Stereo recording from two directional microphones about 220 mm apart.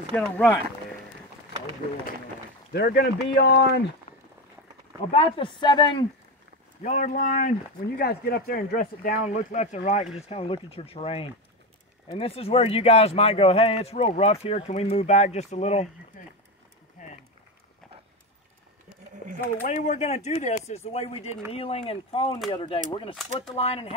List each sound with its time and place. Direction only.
0.1 s speech: 5° left (ahead or behind)
2.7 s speech: 45° left (ahead or behind)
5.1 s speech: 25° left (ahead or behind)
6.8 s speech: 35° left (ahead or behind)
17.0 s a sound: 35° left (ahead or behind)
19.6 s speech: 35° left (ahead or behind)